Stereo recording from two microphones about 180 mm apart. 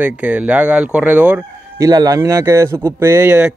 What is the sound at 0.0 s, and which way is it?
Speech, 10° right (ahead or behind).